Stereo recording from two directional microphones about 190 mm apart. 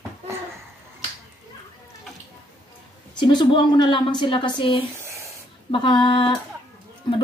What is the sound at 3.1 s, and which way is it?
Speech, 25° left (ahead or behind).